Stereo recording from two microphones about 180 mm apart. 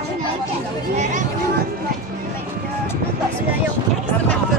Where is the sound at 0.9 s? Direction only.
40° right (ahead or behind).